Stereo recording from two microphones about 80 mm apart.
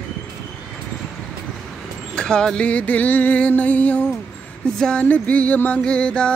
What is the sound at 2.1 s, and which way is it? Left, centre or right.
Music, centre.